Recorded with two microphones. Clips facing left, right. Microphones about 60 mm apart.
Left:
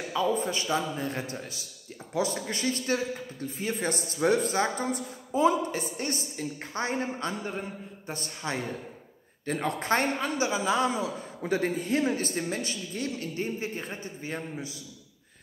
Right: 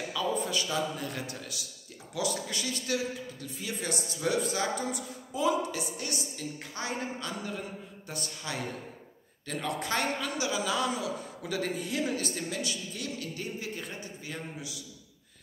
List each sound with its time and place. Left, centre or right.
0.1 s a man's voice: left